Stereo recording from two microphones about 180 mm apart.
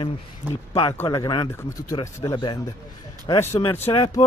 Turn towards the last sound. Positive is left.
turn(degrees=30)  # may be behind; listen again after turning